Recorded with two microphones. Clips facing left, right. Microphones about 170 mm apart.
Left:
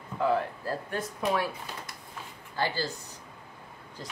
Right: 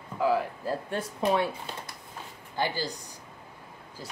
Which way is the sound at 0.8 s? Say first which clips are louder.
Right 3 dB; 25° right (ahead or behind).